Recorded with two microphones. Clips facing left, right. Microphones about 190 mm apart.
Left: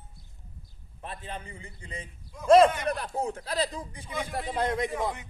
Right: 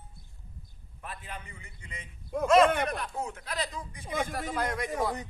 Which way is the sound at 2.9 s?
35° left (ahead or behind).